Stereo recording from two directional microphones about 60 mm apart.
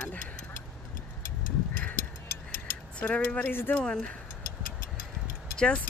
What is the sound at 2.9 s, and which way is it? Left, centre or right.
Speech, left.